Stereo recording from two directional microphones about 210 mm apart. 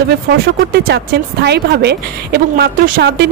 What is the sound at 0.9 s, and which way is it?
Speech, 55° right (ahead or behind).